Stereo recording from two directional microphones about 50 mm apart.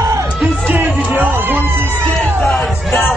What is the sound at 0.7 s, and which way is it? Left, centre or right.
Speech, right.